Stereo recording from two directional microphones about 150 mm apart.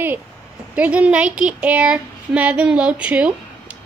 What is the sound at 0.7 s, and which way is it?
Speech, 10° right (ahead or behind).